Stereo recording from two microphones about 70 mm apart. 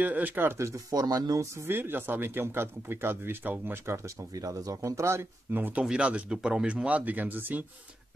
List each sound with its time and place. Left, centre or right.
0.0 s speech: right
0.6 s speech: right
1.7 s speech: right
4.3 s speech: right
5.8 s speech: centre